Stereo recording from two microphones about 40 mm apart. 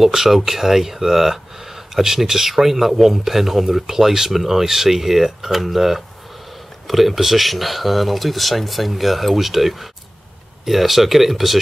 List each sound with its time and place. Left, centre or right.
0.0 s speech: centre